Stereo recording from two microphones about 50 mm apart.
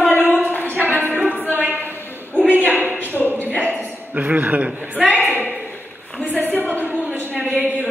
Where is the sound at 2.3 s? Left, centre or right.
Right.